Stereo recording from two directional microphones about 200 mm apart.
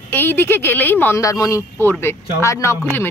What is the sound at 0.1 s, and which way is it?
Speech, 10° left (ahead or behind).